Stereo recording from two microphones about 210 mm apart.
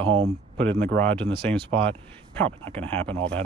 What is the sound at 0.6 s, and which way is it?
Speech, 55° right (ahead or behind).